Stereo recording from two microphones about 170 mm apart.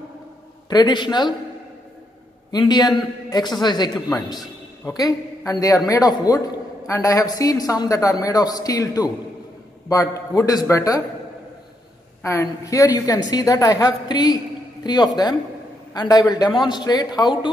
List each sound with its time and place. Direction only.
0.7 s a man's voice: 25° left (ahead or behind)
2.5 s a man's voice: 25° left (ahead or behind)
12.2 s a man's voice: 15° left (ahead or behind)